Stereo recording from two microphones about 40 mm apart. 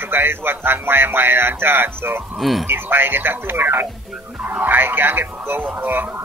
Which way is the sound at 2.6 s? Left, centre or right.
Right.